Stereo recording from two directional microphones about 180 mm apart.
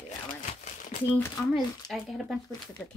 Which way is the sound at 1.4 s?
10° left (ahead or behind).